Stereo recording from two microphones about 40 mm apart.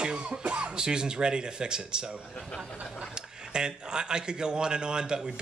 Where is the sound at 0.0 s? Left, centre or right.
Right.